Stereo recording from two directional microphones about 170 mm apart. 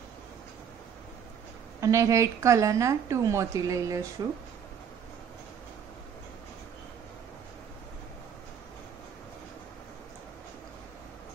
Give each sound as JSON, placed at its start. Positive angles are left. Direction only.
{"t": 1.8, "sound": "a woman's voice", "side_deg": -15}